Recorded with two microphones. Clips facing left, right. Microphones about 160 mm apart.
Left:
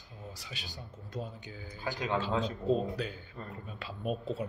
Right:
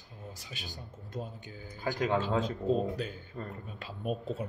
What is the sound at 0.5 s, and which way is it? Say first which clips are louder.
Speech: right 1 dB; 50° right (ahead or behind).